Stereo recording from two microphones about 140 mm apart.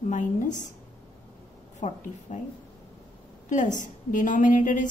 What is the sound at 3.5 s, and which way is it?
A woman's voice, 65° left (ahead or behind).